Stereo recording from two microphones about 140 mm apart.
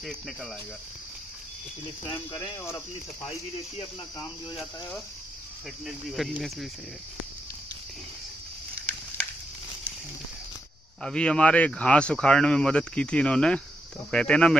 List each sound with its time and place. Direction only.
0.0 s speech: centre (ahead or behind)
2.0 s speech: 35° left (ahead or behind)
2.6 s speech: 20° left (ahead or behind)
3.3 s speech: 45° left (ahead or behind)
4.2 s speech: 30° left (ahead or behind)
5.9 s speech: centre (ahead or behind)
11.0 s speech: 5° left (ahead or behind)